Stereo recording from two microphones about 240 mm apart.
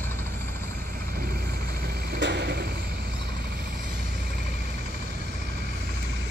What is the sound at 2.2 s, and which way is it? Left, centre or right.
Vehicle, right.